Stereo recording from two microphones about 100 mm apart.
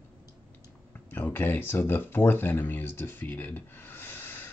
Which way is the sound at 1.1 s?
20° left (ahead or behind).